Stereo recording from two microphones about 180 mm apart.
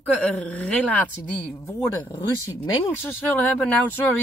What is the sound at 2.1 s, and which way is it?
Speech, 25° left (ahead or behind).